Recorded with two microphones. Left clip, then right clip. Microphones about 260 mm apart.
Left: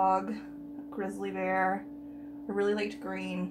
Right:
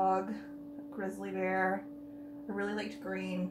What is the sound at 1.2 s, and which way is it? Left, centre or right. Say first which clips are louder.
Speech: left 3 dB; left.